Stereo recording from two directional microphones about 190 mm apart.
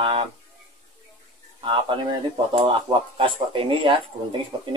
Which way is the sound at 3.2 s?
25° right (ahead or behind).